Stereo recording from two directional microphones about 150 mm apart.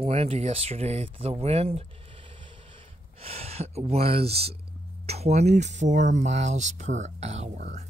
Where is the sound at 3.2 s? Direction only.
40° right (ahead or behind).